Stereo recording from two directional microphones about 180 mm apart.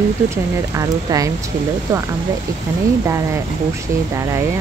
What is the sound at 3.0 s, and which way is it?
Speech, 15° right (ahead or behind).